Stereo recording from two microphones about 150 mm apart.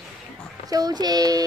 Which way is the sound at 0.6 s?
25° right (ahead or behind).